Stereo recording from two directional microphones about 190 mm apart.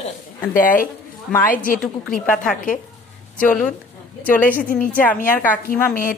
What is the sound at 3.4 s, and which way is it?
A woman's voice, 5° left (ahead or behind).